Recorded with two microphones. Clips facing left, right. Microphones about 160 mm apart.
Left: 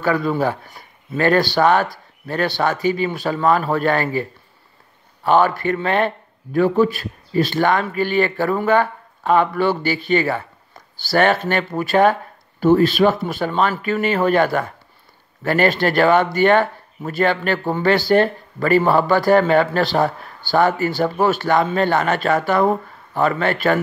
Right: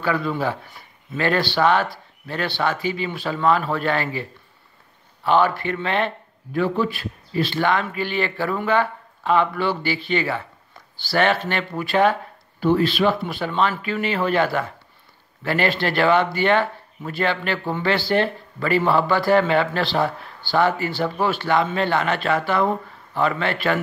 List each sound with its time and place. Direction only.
0.0 s speech: 40° left (ahead or behind)